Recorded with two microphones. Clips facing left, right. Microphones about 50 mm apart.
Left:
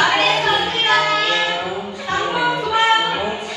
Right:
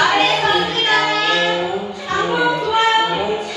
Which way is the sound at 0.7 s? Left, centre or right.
Left.